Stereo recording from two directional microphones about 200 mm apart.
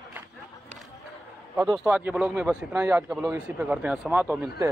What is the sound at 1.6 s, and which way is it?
A man's voice, 5° right (ahead or behind).